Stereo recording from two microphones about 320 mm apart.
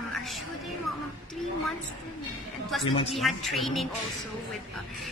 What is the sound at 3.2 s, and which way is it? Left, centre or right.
Speech, centre.